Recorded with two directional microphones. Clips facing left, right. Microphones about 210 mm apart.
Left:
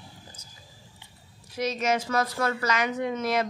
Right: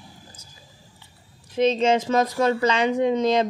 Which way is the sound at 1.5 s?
25° right (ahead or behind).